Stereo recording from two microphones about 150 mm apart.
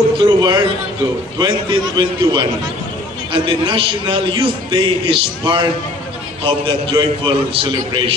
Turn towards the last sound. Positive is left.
turn(degrees=-35)  # may be behind; listen again after turning